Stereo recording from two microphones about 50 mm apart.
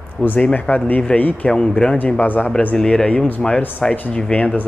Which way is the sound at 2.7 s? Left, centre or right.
Centre.